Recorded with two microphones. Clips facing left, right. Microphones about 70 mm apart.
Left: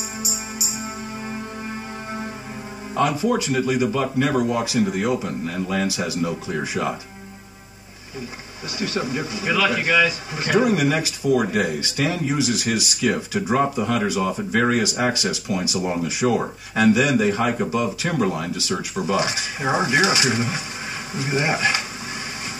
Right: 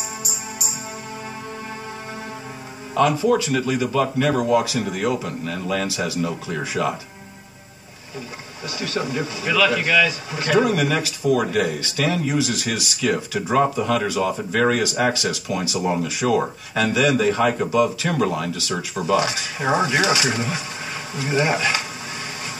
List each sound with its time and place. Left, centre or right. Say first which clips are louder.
3.0 s speech: right 3 dB; left
8.7 s speech: even; left